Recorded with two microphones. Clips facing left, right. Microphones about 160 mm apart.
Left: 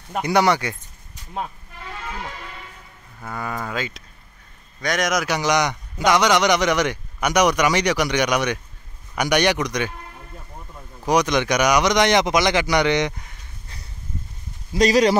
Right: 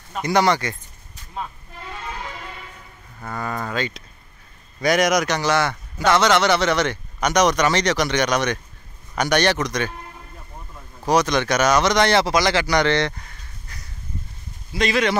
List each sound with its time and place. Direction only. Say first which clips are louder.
0.2 s speech: even; 10° left (ahead or behind)
3.2 s speech: right 1 dB; 5° left (ahead or behind)
5.4 s speech: even; 15° left (ahead or behind)
11.1 s speech: even; 15° left (ahead or behind)
14.7 s speech: left 5 dB; 40° left (ahead or behind)